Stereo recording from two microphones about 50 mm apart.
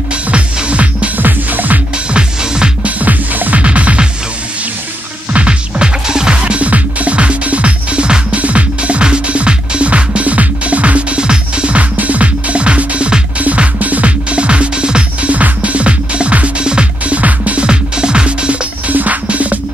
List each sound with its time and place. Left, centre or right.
0.3 s music: right
2.1 s music: centre
3.0 s music: right
5.3 s music: right
17.6 s music: centre